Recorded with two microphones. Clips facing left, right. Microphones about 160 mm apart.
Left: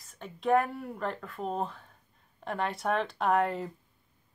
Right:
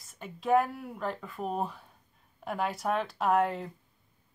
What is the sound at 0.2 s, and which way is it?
Speech, centre (ahead or behind).